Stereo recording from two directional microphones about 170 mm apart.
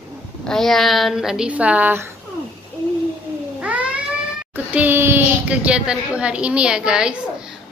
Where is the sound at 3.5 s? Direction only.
10° right (ahead or behind).